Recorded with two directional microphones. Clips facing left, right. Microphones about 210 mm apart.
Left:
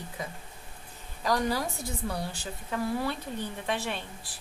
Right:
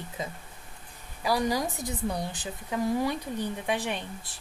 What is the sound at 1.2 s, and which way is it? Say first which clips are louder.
A woman's voice: right 1 dB; 10° right (ahead or behind).